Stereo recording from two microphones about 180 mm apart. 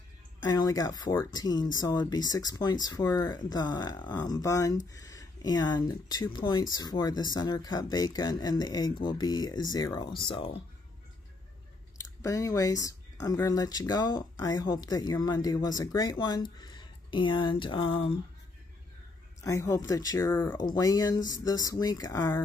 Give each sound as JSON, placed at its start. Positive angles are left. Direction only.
{"t": 0.4, "sound": "speech", "side_deg": 20}
{"t": 12.2, "sound": "speech", "side_deg": 20}
{"t": 19.4, "sound": "speech", "side_deg": 20}